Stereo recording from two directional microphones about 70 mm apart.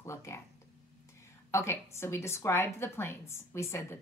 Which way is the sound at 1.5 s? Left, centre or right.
Left.